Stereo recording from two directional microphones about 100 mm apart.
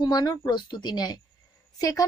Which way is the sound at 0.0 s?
45° left (ahead or behind).